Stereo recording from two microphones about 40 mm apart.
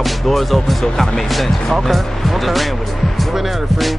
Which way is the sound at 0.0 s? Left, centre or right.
Centre.